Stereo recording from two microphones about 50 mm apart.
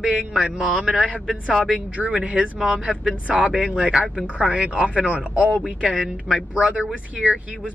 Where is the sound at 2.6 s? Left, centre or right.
Centre.